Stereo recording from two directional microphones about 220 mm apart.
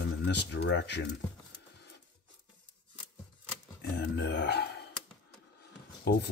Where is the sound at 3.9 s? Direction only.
50° left (ahead or behind).